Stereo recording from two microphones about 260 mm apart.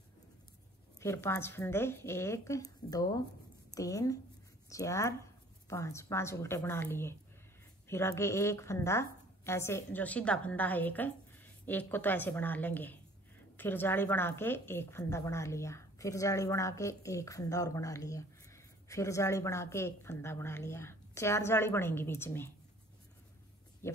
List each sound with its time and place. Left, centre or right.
0.9 s speech: centre
23.8 s speech: centre